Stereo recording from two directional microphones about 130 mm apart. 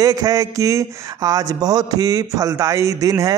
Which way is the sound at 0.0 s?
25° right (ahead or behind).